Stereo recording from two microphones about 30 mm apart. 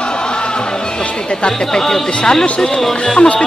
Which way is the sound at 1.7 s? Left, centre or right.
Centre.